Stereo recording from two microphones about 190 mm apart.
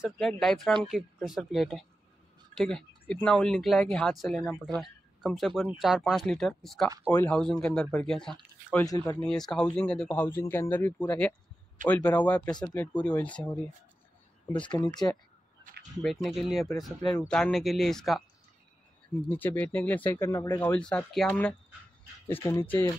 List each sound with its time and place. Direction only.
0.0 s speech: centre (ahead or behind)
8.8 s speech: 20° left (ahead or behind)
9.3 s speech: centre (ahead or behind)
12.4 s speech: 20° left (ahead or behind)
12.7 s speech: 5° left (ahead or behind)
16.0 s speech: centre (ahead or behind)
19.2 s speech: 10° left (ahead or behind)
22.3 s speech: 15° left (ahead or behind)